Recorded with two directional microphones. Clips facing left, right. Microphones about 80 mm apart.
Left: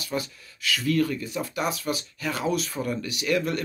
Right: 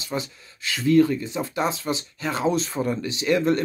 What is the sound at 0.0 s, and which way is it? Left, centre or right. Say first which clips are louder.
Speech: right 1 dB; right.